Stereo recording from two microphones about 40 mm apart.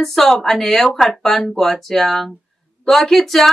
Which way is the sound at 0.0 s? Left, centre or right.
Centre.